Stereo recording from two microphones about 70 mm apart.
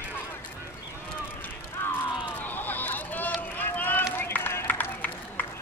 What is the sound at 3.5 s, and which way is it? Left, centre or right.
Run, left.